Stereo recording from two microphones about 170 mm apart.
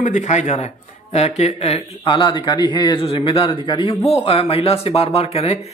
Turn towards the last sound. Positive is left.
turn(degrees=35)  # may be behind; listen again after turning